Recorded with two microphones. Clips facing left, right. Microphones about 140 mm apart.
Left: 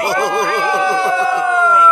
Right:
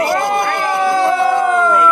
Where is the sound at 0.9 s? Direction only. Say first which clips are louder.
Right 2 dB; 40° right (ahead or behind).